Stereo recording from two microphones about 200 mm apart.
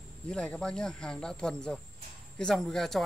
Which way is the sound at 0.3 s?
5° left (ahead or behind).